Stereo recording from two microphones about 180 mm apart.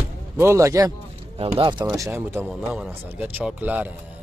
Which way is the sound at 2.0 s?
15° right (ahead or behind).